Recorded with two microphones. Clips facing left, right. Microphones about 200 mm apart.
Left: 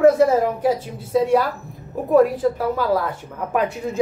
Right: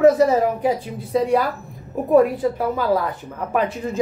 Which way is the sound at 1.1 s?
5° left (ahead or behind).